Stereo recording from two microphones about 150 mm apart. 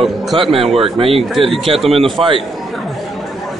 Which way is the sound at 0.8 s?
40° right (ahead or behind).